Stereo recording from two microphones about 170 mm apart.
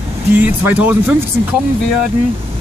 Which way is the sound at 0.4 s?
10° right (ahead or behind).